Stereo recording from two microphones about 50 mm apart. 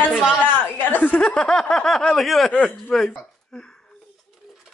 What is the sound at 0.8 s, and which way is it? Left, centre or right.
Speech, left.